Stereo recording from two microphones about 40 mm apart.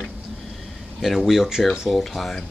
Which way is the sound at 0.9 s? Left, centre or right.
Centre.